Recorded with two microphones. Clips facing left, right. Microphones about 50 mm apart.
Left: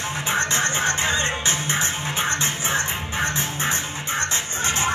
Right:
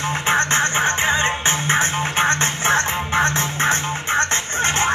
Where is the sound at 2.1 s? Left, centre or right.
Right.